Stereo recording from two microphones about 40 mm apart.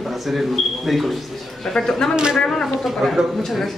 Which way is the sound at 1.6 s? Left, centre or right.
Centre.